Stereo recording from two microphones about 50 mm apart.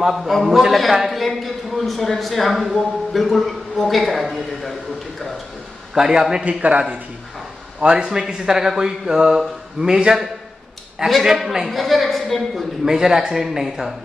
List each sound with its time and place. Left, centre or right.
0.0 s a man's voice: centre
5.9 s speech: centre
6.4 s a man's voice: right
7.8 s speech: centre
11.1 s a man's voice: centre
12.8 s speech: centre